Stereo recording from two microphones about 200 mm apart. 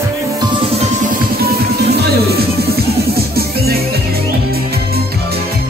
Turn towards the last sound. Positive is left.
turn(degrees=-50)  # may be behind; listen again after turning